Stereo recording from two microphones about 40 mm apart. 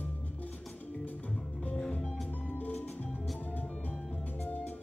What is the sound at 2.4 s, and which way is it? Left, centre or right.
Music, left.